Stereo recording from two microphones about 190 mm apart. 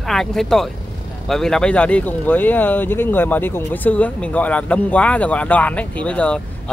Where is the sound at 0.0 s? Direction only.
Centre (ahead or behind).